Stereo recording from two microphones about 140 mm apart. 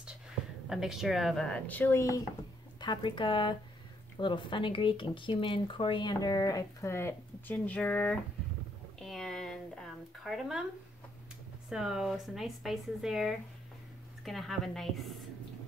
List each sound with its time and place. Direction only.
0.7 s speech: 5° right (ahead or behind); by 2.2 s 20° left (ahead or behind)
2.8 s speech: 35° left (ahead or behind); by 8.2 s 10° left (ahead or behind)
9.0 s a sound: 5° left (ahead or behind)
10.2 s speech: centre (ahead or behind)
11.7 s speech: 5° right (ahead or behind)